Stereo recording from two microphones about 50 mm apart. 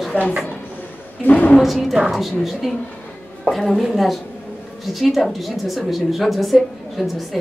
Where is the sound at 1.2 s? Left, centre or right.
Left.